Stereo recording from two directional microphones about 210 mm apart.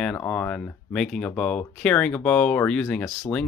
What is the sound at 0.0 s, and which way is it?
Speech, 5° left (ahead or behind).